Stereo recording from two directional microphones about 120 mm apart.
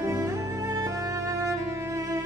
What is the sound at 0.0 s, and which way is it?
Music, 25° right (ahead or behind).